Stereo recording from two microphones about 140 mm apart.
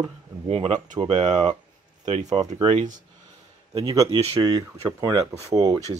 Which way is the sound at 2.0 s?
35° right (ahead or behind).